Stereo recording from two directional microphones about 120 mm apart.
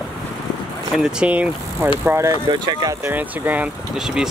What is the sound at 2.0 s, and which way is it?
Speech, 20° right (ahead or behind).